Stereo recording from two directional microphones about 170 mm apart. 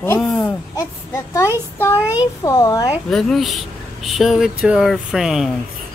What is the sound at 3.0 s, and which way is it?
Speech, centre (ahead or behind).